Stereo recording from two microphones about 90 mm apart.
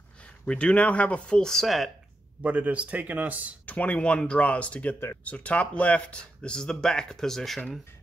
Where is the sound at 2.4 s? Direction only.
15° right (ahead or behind).